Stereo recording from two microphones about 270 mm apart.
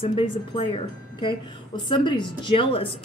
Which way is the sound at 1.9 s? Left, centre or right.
Centre.